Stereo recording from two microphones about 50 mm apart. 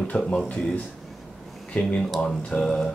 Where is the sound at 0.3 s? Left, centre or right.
Centre.